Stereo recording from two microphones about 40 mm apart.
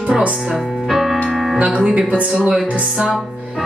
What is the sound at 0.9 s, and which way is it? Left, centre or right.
Music, centre.